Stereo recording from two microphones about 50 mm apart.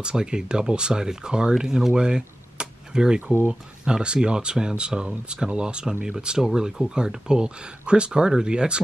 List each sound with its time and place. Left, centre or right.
0.0 s speech: centre